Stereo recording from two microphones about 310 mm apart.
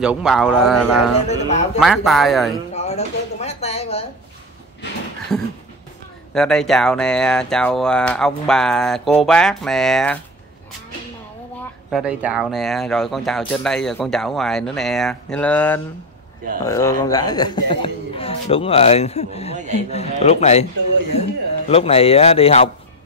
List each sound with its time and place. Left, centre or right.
0.0 s speech: centre
2.7 s a sound: left
5.3 s speech: centre
11.9 s speech: centre
19.5 s speech: right
19.9 s a man's voice: centre